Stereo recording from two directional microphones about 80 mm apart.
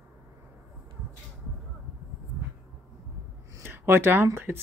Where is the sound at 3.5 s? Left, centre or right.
Right.